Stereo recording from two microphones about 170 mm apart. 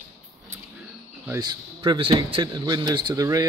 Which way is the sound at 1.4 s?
25° right (ahead or behind).